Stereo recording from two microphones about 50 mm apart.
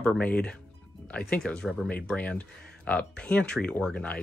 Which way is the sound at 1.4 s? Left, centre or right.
Centre.